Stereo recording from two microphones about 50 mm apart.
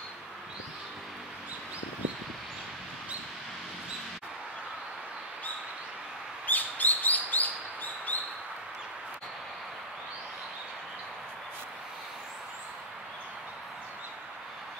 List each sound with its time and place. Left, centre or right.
6.4 s bird: left